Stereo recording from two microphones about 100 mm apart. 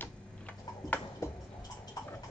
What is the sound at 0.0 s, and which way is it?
Tick-tock, 15° left (ahead or behind).